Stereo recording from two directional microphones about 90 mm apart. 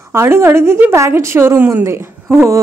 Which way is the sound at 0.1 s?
30° right (ahead or behind).